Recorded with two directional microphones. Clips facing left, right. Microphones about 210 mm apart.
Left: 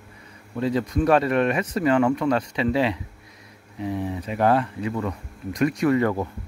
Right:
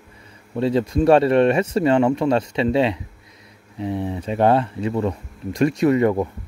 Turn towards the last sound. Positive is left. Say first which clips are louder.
# right 4 dB
turn(degrees=-20)  # may be behind; listen again after turning